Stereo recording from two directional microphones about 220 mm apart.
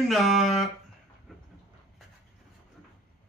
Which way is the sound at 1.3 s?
Centre (ahead or behind).